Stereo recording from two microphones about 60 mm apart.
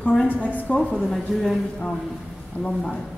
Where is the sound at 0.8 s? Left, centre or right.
Centre.